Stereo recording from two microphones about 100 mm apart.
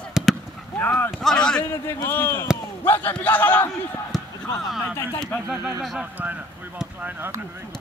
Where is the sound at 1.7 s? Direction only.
25° left (ahead or behind).